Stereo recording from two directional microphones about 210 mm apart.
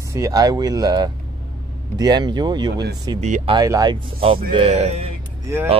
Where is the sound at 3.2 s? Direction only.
30° right (ahead or behind).